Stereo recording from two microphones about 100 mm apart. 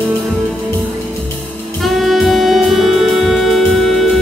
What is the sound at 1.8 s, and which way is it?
Saxophone, centre (ahead or behind).